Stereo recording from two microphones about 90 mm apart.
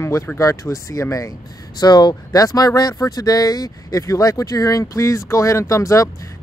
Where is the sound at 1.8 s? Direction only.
50° left (ahead or behind).